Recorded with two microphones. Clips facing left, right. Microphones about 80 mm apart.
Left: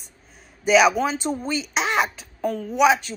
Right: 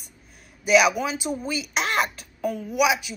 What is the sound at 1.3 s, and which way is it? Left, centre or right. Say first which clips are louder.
Speech: left 2 dB; left.